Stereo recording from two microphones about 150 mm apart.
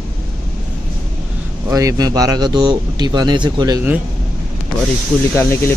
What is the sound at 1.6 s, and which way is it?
A man's voice, 20° right (ahead or behind).